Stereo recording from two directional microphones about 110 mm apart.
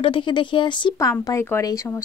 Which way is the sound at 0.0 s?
50° left (ahead or behind).